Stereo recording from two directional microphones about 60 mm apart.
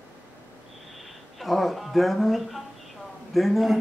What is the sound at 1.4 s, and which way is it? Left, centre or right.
Speech, centre.